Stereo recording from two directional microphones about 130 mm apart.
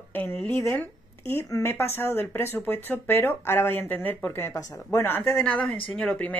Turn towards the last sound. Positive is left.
turn(degrees=10)  # may be behind; listen again after turning